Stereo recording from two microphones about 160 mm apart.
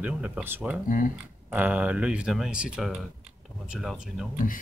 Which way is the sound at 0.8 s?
55° left (ahead or behind).